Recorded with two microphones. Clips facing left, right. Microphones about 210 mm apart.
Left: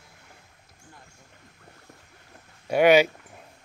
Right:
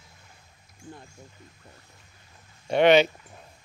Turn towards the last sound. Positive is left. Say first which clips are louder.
# even
turn(degrees=10)  # may be behind; listen again after turning